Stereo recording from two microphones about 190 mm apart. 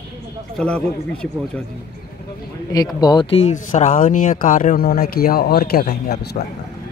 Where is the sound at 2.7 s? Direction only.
20° left (ahead or behind); by 6.3 s 55° left (ahead or behind).